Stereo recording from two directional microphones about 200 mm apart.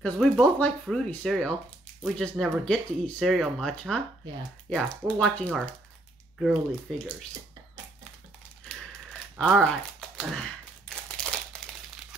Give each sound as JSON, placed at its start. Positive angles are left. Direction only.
{"t": 0.0, "sound": "speech", "side_deg": 5}
{"t": 6.9, "sound": "speech", "side_deg": 0}
{"t": 9.4, "sound": "speech", "side_deg": 0}
{"t": 11.1, "sound": "crumpling", "side_deg": 5}